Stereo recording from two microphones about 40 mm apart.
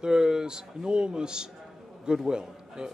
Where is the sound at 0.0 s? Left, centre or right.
Centre.